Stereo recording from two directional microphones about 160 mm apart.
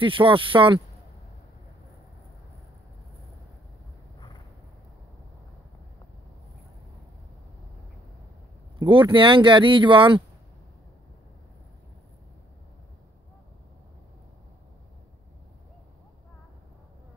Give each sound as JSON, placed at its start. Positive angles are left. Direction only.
{"t": 0.0, "sound": "speech", "side_deg": -35}
{"t": 8.7, "sound": "speech", "side_deg": -30}